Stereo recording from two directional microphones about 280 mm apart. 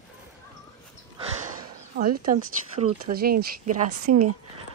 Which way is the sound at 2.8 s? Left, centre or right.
Right.